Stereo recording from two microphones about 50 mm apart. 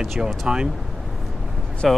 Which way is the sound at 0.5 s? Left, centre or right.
Centre.